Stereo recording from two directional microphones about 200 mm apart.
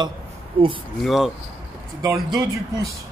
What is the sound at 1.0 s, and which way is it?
Speech, centre (ahead or behind).